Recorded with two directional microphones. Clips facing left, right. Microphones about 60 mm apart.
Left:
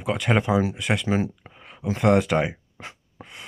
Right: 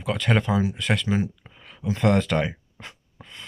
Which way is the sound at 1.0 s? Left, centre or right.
Left.